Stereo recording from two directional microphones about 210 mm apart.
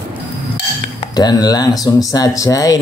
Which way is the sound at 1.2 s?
20° left (ahead or behind).